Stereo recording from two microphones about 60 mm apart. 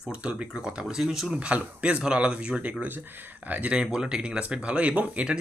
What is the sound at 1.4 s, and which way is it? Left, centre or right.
Speech, centre.